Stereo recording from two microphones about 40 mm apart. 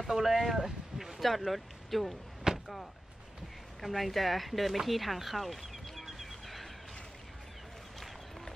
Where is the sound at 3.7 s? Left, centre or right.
Centre.